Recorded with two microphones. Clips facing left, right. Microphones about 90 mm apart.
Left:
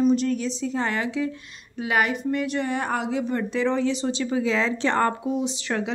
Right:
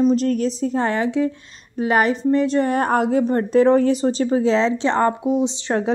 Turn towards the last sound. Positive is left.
turn(degrees=-30)  # may be behind; listen again after turning